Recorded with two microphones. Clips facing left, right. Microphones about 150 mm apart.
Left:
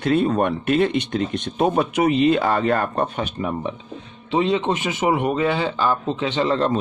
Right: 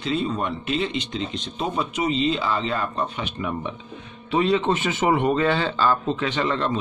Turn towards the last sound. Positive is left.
turn(degrees=25)  # may be behind; listen again after turning